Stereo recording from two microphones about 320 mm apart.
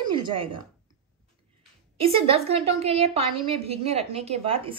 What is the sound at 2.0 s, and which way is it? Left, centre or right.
A woman's voice, centre.